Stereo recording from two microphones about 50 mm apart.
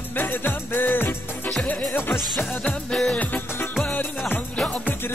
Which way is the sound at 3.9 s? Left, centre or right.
Left.